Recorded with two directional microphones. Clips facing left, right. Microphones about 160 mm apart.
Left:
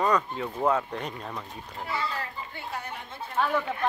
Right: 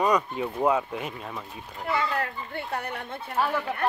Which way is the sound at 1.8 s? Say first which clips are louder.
Right 5 dB; 60° right (ahead or behind).